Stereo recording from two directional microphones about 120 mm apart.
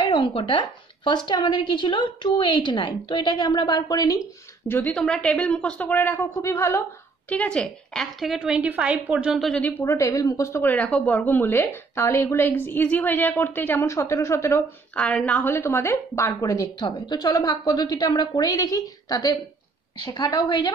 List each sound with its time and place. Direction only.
0.0 s a sound: 40° left (ahead or behind)
0.3 s a woman's voice: 45° left (ahead or behind)
4.6 s speech: 15° left (ahead or behind)
7.2 s a woman's voice: 10° left (ahead or behind); by 9.4 s 10° right (ahead or behind)
9.4 s speech: 10° left (ahead or behind)
9.8 s speech: 25° left (ahead or behind)
15.0 s a woman's voice: 10° left (ahead or behind); by 20.7 s 35° left (ahead or behind)